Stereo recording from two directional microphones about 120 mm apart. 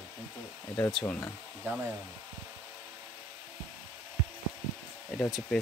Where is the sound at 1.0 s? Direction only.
20° left (ahead or behind).